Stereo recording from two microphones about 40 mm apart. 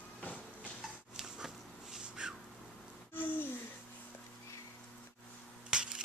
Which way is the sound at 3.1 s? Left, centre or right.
Left.